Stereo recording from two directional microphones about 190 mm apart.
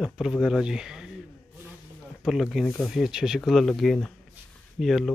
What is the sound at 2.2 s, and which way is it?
Speech, centre (ahead or behind).